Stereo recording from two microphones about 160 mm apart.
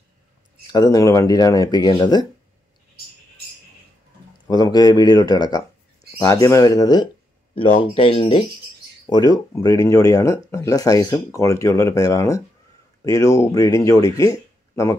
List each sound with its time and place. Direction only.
0.7 s speech: 25° left (ahead or behind)
4.5 s speech: 25° left (ahead or behind)
7.9 s speech: 35° left (ahead or behind)